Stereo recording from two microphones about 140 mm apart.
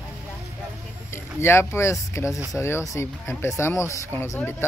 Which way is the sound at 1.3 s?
20° left (ahead or behind).